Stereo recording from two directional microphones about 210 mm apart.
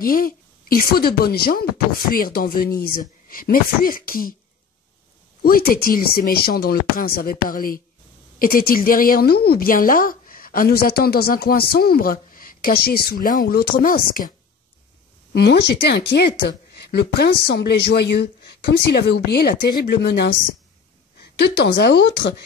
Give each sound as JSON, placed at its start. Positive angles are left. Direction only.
{"t": 0.0, "sound": "a woman's voice", "side_deg": 45}
{"t": 5.4, "sound": "a woman's voice", "side_deg": 45}
{"t": 15.3, "sound": "a woman's voice", "side_deg": 50}
{"t": 21.4, "sound": "a woman's voice", "side_deg": 55}